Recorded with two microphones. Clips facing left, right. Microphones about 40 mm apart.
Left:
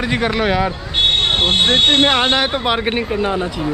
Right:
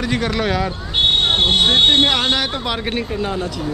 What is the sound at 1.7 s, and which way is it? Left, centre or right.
Speech, left.